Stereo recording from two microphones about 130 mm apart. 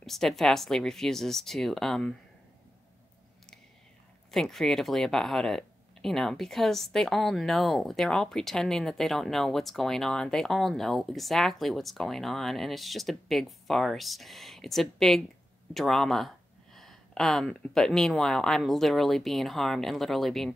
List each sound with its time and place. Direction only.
0.0 s speech: centre (ahead or behind)
4.3 s speech: 5° left (ahead or behind)